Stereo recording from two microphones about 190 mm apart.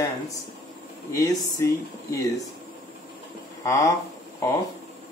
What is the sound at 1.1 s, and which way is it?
Speech, 15° left (ahead or behind).